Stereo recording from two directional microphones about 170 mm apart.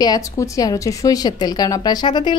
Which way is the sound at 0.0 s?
20° left (ahead or behind).